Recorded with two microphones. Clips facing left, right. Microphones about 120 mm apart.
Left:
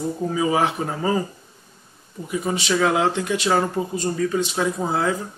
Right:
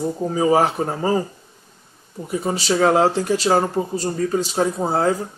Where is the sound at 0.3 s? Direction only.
40° right (ahead or behind).